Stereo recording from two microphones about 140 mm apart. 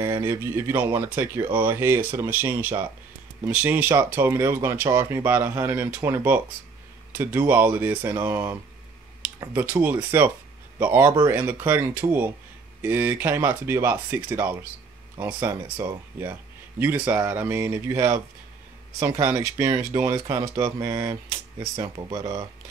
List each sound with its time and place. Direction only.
0.0 s speech: 15° right (ahead or behind)
21.7 s speech: 40° right (ahead or behind)
22.1 s speech: 25° right (ahead or behind)